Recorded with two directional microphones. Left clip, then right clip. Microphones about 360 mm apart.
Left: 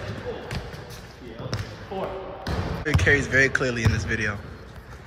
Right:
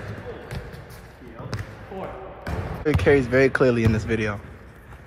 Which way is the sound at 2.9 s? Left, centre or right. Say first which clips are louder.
Right 2 dB; centre.